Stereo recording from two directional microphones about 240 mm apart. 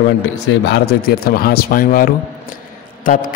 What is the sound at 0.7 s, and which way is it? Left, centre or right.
A man's voice, left.